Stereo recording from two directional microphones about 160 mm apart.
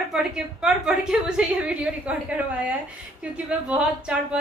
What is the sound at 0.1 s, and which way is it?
A woman's voice, 5° right (ahead or behind).